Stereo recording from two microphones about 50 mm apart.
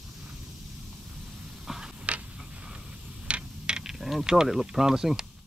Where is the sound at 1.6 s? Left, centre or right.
Centre.